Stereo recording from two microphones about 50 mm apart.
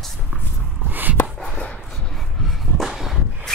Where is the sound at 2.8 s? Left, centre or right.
Centre.